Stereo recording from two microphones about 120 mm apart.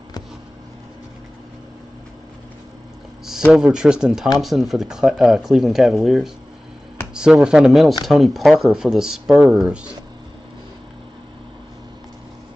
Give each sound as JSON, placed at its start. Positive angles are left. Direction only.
{"t": 3.5, "sound": "speech", "side_deg": -5}